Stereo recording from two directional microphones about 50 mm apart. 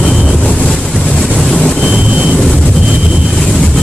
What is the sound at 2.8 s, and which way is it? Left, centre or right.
Vehicle, centre.